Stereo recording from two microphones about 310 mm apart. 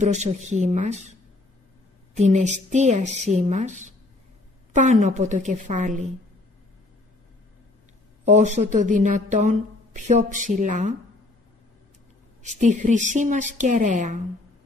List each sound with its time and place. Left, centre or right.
0.0 s a woman's voice: right
2.1 s a woman's voice: right
8.3 s a woman's voice: right
12.4 s a woman's voice: right